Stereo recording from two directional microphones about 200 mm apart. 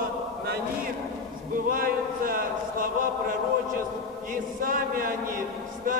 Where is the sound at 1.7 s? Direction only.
45° right (ahead or behind).